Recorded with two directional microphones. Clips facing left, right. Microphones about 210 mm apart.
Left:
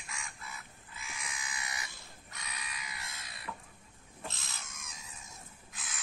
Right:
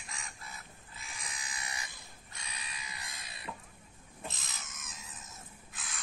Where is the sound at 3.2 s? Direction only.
25° right (ahead or behind).